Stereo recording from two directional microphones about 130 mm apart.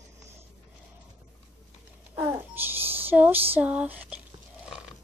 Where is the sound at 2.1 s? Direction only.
20° right (ahead or behind).